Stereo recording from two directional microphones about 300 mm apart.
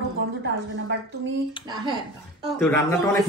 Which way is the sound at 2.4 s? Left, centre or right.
Centre.